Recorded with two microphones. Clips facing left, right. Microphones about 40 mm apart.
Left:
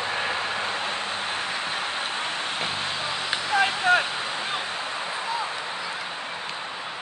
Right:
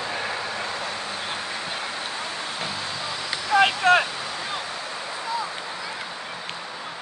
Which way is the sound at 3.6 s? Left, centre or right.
Right.